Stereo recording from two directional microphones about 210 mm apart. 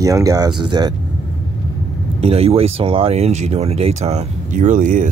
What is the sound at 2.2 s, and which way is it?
Speech, 30° right (ahead or behind).